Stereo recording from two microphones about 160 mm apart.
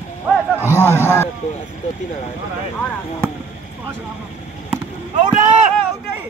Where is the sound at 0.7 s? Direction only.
15° left (ahead or behind).